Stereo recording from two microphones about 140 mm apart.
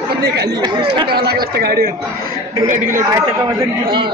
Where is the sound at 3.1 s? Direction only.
25° right (ahead or behind).